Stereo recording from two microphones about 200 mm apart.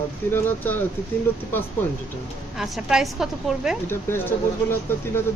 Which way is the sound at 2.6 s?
5° right (ahead or behind).